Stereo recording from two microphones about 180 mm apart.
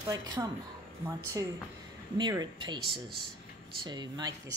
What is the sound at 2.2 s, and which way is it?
Speech, 25° right (ahead or behind).